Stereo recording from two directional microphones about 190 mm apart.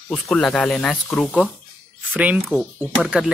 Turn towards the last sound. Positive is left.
turn(degrees=-5)  # may be behind; listen again after turning